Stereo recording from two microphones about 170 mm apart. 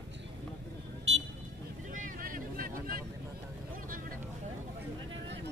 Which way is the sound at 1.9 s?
50° right (ahead or behind).